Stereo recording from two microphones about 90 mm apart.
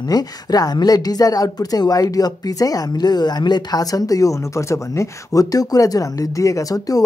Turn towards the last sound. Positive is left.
turn(degrees=45)  # may be behind; listen again after turning